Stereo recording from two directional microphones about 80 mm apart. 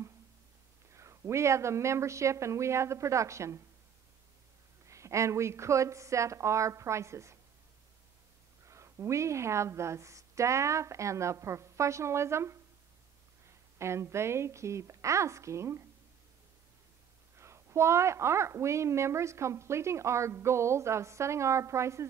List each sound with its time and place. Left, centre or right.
0.9 s a woman's voice: right
4.8 s a woman's voice: right
8.6 s a woman's voice: right
13.7 s a woman's voice: right
17.4 s a woman's voice: right